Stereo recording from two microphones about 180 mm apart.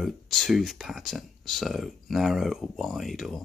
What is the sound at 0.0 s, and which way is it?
Speech, centre (ahead or behind).